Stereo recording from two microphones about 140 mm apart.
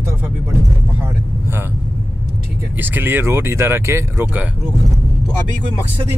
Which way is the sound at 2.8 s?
15° right (ahead or behind).